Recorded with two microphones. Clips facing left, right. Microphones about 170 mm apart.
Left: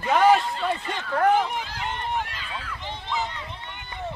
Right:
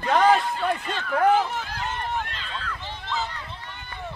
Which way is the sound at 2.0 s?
15° left (ahead or behind).